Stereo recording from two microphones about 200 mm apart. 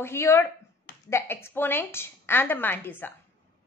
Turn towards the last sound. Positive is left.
turn(degrees=10)  # may be behind; listen again after turning